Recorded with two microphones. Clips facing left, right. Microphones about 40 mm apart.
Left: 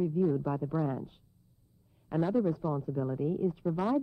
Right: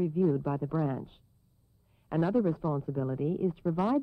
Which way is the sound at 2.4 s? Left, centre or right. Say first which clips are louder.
Right 1 dB; right.